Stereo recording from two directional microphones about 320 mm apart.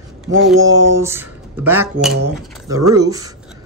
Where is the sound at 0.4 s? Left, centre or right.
Centre.